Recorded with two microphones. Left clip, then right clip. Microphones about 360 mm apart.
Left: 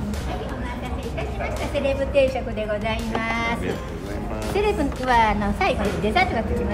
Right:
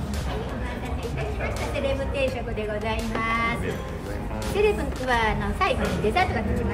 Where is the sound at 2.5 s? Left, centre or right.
Left.